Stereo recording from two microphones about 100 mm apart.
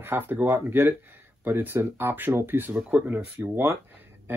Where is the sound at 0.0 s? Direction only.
20° right (ahead or behind).